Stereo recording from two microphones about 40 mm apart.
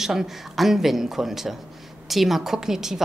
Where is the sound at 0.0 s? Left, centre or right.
Centre.